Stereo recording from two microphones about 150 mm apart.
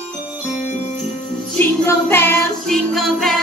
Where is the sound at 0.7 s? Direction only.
50° left (ahead or behind).